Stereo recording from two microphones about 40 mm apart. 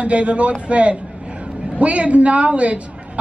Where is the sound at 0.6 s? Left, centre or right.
Right.